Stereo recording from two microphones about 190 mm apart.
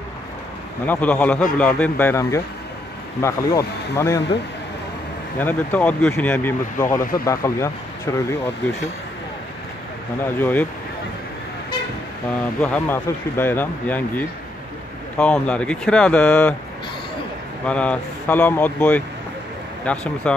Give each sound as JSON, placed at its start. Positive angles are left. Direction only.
{"t": 0.8, "sound": "speech", "side_deg": 10}
{"t": 5.4, "sound": "speech", "side_deg": 10}
{"t": 7.0, "sound": "speech", "side_deg": 50}
{"t": 7.2, "sound": "speech", "side_deg": 15}
{"t": 10.2, "sound": "speech", "side_deg": 10}
{"t": 12.5, "sound": "speech", "side_deg": 10}
{"t": 17.6, "sound": "speech", "side_deg": 5}